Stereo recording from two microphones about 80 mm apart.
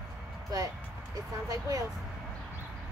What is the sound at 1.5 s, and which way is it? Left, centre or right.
Speech, right.